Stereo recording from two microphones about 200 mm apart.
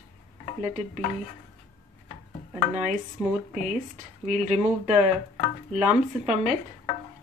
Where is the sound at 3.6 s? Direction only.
40° right (ahead or behind).